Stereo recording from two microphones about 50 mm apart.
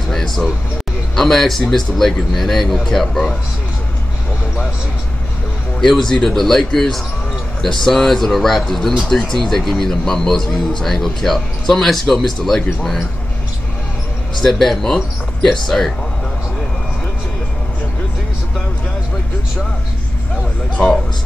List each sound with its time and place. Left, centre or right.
0.1 s speech: centre
5.8 s speech: centre
14.3 s speech: centre
20.7 s speech: left